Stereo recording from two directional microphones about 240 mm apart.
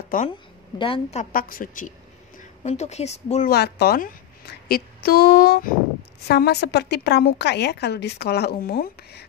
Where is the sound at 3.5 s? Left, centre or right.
Left.